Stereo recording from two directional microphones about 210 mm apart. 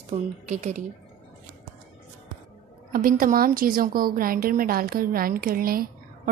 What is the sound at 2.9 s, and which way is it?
A woman's voice, 40° right (ahead or behind).